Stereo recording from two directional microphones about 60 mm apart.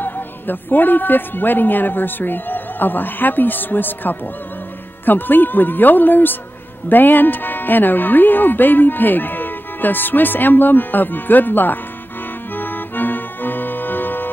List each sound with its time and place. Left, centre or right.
0.0 s speech: left
12.5 s accordion: left